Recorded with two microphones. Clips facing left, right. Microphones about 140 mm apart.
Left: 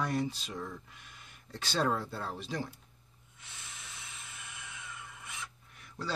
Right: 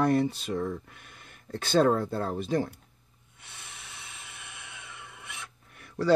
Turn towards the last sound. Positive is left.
turn(degrees=-65)  # may be behind; listen again after turning